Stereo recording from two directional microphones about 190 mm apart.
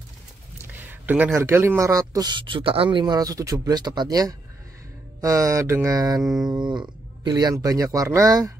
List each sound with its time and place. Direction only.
0.7 s speech: 10° right (ahead or behind)
5.2 s mantra: 15° right (ahead or behind)
6.4 s speech: 20° right (ahead or behind)